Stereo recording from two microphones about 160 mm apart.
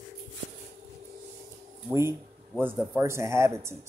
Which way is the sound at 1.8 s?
15° right (ahead or behind).